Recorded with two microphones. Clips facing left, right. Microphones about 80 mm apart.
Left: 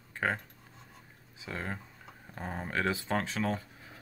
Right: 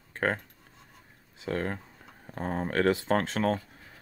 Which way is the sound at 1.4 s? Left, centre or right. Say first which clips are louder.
Right 7 dB; right.